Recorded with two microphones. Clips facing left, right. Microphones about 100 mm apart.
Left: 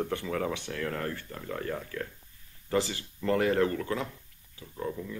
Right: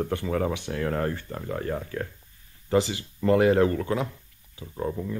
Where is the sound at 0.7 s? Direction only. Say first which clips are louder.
Right 6 dB; 30° right (ahead or behind).